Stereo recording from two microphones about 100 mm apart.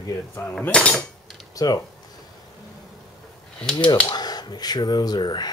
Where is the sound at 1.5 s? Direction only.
40° left (ahead or behind).